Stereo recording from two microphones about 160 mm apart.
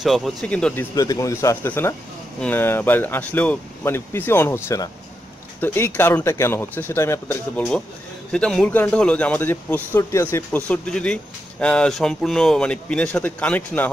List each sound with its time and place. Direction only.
0.0 s speech: centre (ahead or behind)
0.9 s speech: 20° left (ahead or behind)